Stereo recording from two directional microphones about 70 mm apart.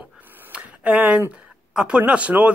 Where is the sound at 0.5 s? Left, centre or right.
Centre.